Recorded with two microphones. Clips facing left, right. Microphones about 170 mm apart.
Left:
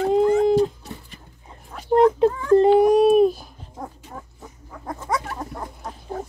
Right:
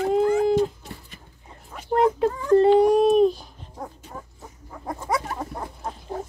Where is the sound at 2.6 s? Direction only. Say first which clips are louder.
Left 2 dB; 10° left (ahead or behind).